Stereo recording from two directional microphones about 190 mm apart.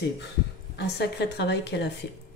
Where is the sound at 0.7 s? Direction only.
60° left (ahead or behind).